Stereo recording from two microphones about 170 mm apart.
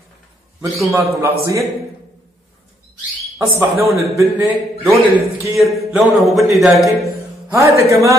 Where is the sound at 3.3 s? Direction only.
15° right (ahead or behind).